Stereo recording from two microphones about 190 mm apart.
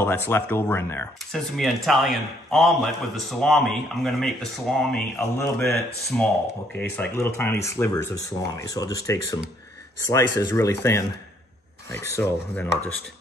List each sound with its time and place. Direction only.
0.0 s speech: 10° left (ahead or behind)
1.6 s a man's voice: centre (ahead or behind)